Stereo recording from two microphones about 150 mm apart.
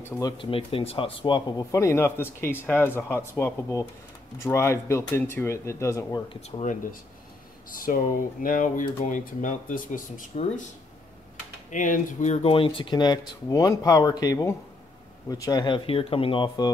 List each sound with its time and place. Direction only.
0.4 s speech: 35° left (ahead or behind); by 6.2 s 20° left (ahead or behind)
6.2 s speech: 35° left (ahead or behind)
6.6 s speech: 60° left (ahead or behind)
11.7 s speech: 60° left (ahead or behind); by 16.7 s 30° left (ahead or behind)